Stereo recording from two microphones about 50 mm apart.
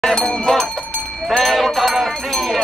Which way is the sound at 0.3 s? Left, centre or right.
Centre.